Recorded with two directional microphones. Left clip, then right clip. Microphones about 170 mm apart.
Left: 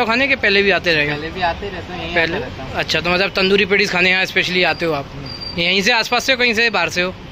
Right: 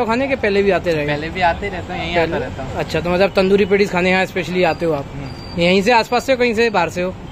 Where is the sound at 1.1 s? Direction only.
20° right (ahead or behind).